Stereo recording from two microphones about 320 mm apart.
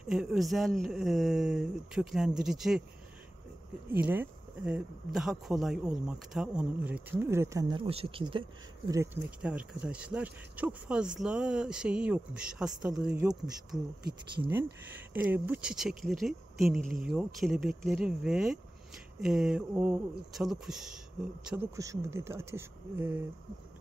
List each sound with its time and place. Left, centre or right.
0.1 s speech: centre
3.9 s speech: centre